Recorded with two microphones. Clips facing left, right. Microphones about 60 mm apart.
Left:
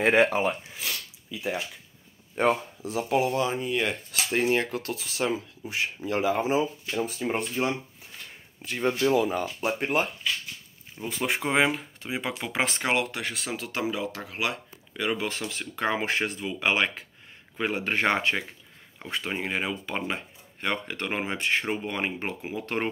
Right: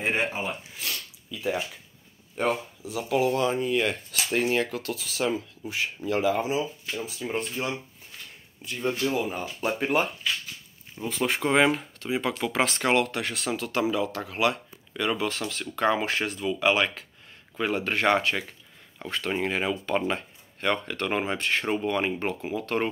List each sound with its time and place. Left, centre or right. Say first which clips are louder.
0.0 s speech: left 6 dB; left
0.7 s sniff: even; centre
2.3 s speech: left 3 dB; left
3.0 s speech: even; left
3.3 s speech: right 2 dB; centre
4.4 s speech: left 1 dB; left
6.4 s speech: left 3 dB; left
8.6 s speech: left 3 dB; left
9.6 s speech: right 3 dB; centre
12.0 s speech: right 4 dB; centre
19.3 s speech: right 3 dB; centre